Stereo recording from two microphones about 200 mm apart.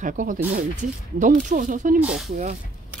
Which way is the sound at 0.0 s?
40° right (ahead or behind).